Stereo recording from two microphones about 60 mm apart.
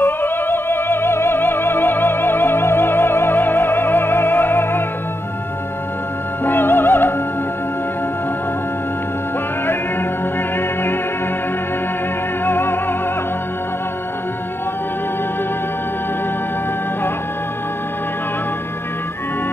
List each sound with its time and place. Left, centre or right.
0.0 s music: left
6.4 s music: left
12.4 s music: left